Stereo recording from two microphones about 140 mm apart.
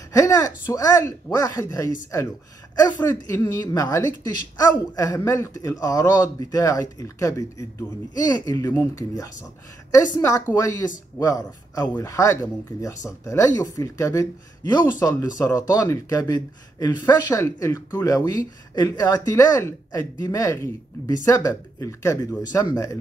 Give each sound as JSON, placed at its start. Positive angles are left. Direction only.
{"t": 0.1, "sound": "speech", "side_deg": 25}